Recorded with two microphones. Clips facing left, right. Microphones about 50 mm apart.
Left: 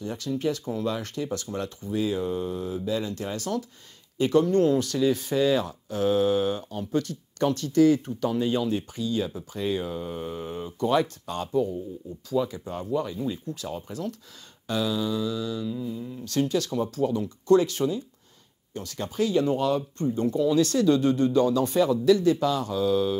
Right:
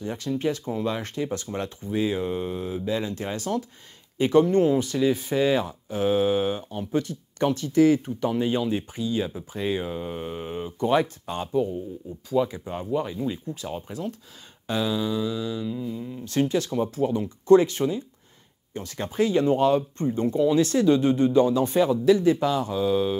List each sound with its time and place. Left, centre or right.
0.0 s speech: right